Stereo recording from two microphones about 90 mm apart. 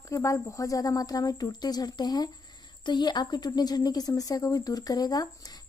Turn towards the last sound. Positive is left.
turn(degrees=45)  # may be behind; listen again after turning